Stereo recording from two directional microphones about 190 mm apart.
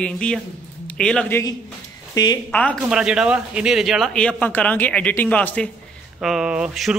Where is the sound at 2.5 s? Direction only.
5° left (ahead or behind).